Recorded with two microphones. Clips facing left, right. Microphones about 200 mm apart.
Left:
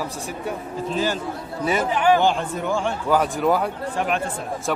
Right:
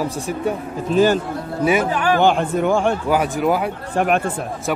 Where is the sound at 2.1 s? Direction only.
60° right (ahead or behind).